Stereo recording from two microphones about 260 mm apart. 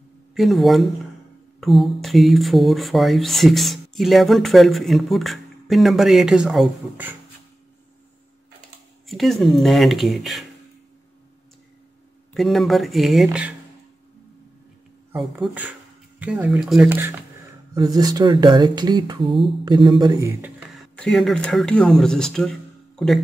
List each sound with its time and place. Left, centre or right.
0.3 s speech: centre
9.0 s speech: centre
12.4 s speech: centre
15.1 s speech: centre
20.7 s speech: centre